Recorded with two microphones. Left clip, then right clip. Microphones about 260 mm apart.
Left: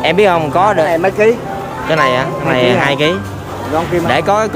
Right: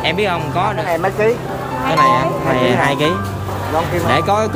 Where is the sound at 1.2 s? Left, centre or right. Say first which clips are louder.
Left 5 dB; left.